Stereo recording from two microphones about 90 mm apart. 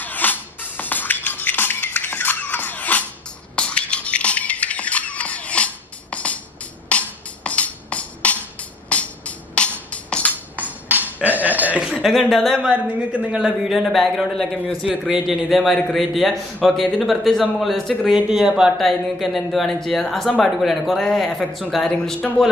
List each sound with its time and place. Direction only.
0.0 s music: 20° left (ahead or behind)
3.5 s squeak: 10° left (ahead or behind)
6.9 s music: 15° left (ahead or behind)
10.5 s music: 20° right (ahead or behind)
12.1 s speech: 5° left (ahead or behind)
12.5 s speech: 15° right (ahead or behind); by 14.6 s 5° left (ahead or behind)
14.9 s speech: 5° right (ahead or behind); by 22.3 s 10° left (ahead or behind)